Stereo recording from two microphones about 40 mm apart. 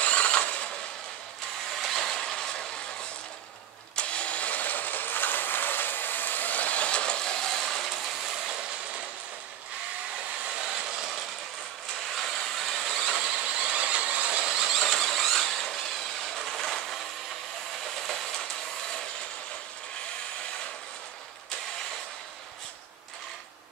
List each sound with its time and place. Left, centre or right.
0.0 s a sound: left
1.8 s vehicle: centre
3.9 s vehicle: left; by 8.0 s centre
10.4 s hair dryer: right
12.2 s train: centre
13.7 s vehicle: right
14.5 s mechanisms: centre
14.8 s a sound: centre
16.4 s vehicle: centre